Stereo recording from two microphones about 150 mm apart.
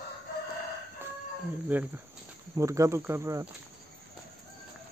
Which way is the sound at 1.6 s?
10° right (ahead or behind).